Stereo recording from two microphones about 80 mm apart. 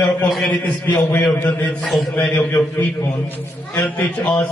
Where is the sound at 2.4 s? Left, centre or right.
Left.